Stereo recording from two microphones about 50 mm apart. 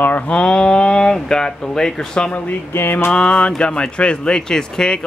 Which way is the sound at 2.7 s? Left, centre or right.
Left.